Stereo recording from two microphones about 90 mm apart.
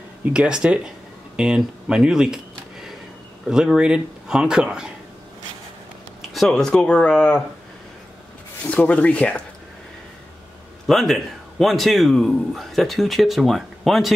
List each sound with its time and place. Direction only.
0.2 s speech: 10° right (ahead or behind)
3.4 s speech: 5° right (ahead or behind)
6.3 s speech: 5° left (ahead or behind)
8.6 s speech: 15° left (ahead or behind)
10.9 s speech: 5° left (ahead or behind)